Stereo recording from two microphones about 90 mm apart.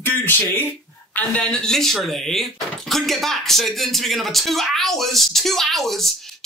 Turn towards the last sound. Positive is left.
turn(degrees=5)  # may be behind; listen again after turning